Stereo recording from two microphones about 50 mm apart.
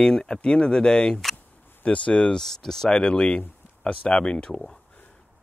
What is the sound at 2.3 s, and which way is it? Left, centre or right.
Speech, centre.